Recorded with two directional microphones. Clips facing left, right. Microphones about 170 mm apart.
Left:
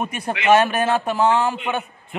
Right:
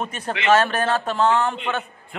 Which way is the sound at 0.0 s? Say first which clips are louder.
Left 2 dB; 10° left (ahead or behind).